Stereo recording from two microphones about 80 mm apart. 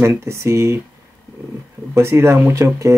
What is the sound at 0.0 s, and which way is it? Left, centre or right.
Speech, right.